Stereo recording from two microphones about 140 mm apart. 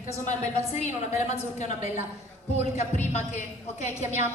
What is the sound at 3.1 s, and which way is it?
Speech, 50° left (ahead or behind).